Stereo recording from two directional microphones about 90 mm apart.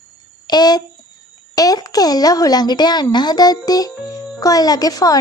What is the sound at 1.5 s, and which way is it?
A woman's voice, 45° left (ahead or behind).